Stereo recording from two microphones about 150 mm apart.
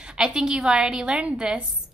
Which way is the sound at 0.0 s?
5° right (ahead or behind).